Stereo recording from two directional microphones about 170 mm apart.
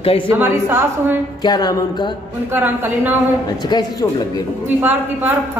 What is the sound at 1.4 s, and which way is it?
Speech, 25° left (ahead or behind).